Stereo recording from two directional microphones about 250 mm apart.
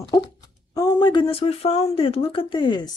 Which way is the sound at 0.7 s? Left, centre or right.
Centre.